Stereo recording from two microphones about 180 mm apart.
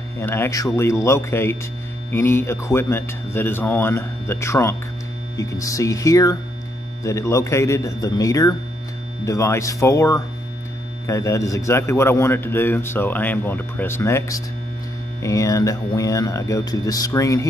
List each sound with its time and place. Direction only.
0.2 s a man's voice: 15° left (ahead or behind)